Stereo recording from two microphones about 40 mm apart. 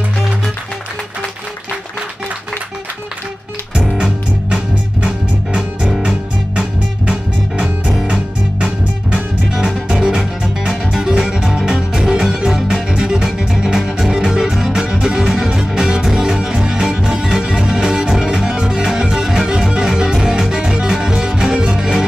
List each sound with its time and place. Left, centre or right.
3.7 s music: centre